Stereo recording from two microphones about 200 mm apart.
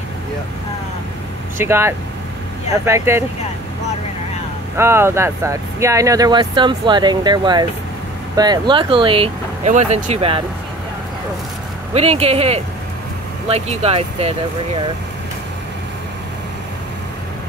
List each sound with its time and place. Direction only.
1.6 s speech: 10° right (ahead or behind)
4.7 s speech: 10° right (ahead or behind); by 10.4 s 30° right (ahead or behind)
11.9 s speech: 30° right (ahead or behind)